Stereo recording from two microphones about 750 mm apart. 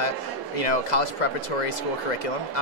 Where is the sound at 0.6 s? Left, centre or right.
Left.